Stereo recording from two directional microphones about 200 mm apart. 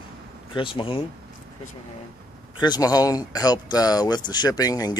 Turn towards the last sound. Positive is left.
turn(degrees=20)  # may be behind; listen again after turning